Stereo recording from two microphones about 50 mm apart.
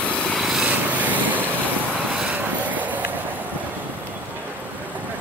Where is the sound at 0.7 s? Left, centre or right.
Right.